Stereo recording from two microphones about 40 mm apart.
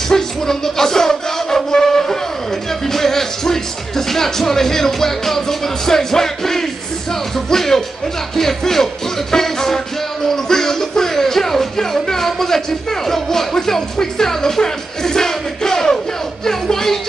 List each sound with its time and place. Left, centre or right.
0.1 s music: centre
8.4 s speech: centre
9.3 s music: centre